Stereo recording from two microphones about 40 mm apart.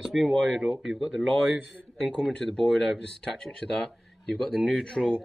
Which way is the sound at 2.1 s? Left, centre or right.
Left.